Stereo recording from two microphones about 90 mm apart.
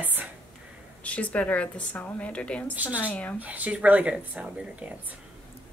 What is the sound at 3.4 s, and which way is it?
Speech, 15° right (ahead or behind).